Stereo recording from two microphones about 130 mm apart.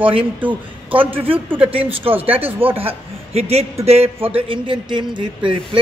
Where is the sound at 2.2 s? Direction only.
45° right (ahead or behind).